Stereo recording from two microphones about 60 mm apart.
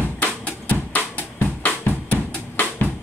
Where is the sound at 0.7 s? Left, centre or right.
Left.